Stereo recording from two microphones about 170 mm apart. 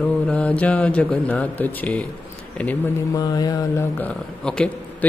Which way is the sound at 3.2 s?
20° left (ahead or behind).